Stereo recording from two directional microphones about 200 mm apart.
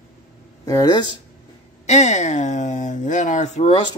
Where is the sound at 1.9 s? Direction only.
35° left (ahead or behind).